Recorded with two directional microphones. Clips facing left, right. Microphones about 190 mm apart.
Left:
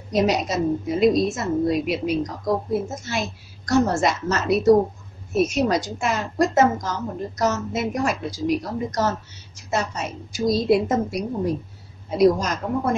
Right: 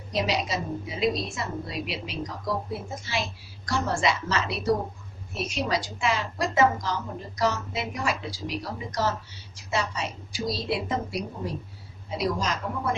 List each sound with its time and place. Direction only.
0.1 s a woman's voice: 45° left (ahead or behind)